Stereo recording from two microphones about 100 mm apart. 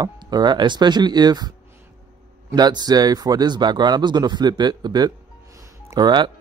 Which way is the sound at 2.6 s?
45° right (ahead or behind).